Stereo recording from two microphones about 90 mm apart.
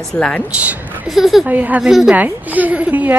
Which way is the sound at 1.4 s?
20° right (ahead or behind).